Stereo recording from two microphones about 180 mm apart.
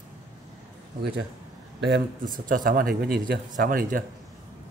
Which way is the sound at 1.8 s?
70° right (ahead or behind).